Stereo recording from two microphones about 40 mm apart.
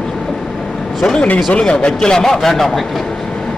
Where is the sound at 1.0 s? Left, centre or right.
Left.